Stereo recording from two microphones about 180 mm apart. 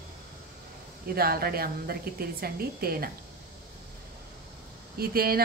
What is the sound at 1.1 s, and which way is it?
A woman's voice, 60° right (ahead or behind).